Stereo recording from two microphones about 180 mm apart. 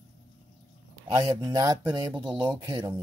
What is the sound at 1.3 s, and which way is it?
Speech, 20° right (ahead or behind).